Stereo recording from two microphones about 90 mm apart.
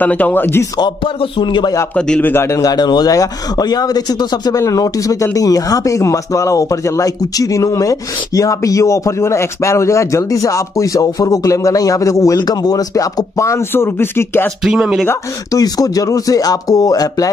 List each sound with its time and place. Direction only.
0.0 s a man's voice: 15° left (ahead or behind)
0.7 s speech: 60° left (ahead or behind)
2.0 s a man's voice: 10° left (ahead or behind)
2.3 s a man's voice: 35° left (ahead or behind)
14.6 s speech: 5° right (ahead or behind)
15.5 s a man's voice: 45° left (ahead or behind)